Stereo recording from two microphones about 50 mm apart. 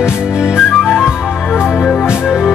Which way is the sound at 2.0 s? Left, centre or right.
Centre.